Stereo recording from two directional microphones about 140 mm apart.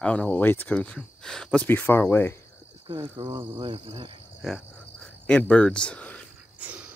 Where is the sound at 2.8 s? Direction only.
45° right (ahead or behind).